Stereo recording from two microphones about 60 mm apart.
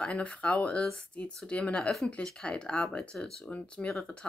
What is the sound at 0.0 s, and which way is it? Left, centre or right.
Speech, centre.